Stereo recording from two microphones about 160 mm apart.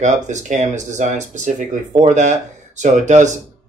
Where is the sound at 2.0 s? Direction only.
45° right (ahead or behind).